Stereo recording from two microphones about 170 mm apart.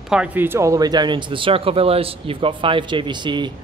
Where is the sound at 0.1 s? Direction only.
10° right (ahead or behind).